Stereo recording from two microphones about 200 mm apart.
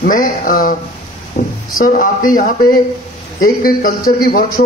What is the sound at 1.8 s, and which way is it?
A man's voice, 45° left (ahead or behind).